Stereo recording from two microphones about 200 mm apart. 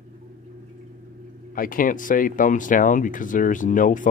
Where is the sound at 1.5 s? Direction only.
45° left (ahead or behind).